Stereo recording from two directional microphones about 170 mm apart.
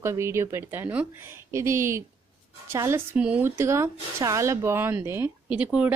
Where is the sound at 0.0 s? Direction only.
15° right (ahead or behind).